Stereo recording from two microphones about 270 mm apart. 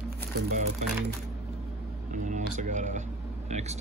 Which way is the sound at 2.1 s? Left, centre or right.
Right.